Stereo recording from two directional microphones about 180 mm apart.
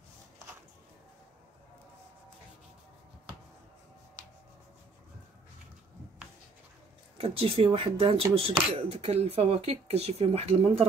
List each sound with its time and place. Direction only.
7.2 s speech: 30° right (ahead or behind)